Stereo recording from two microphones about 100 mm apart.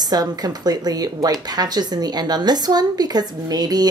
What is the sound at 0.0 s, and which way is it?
Speech, 40° right (ahead or behind).